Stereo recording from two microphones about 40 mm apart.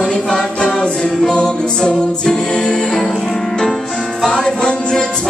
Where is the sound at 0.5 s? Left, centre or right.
Left.